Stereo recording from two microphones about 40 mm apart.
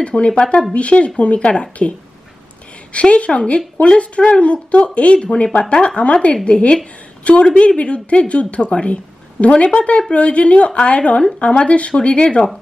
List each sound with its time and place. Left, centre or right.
0.0 s a woman's voice: left